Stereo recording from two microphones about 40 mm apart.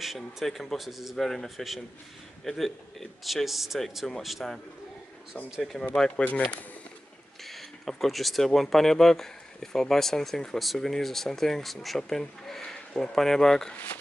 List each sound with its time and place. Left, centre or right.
0.0 s speech: centre
1.1 s speech: centre
3.4 s speech: centre
5.6 s speech: centre
7.4 s a sound: centre
8.5 s speech: centre
10.6 s speech: centre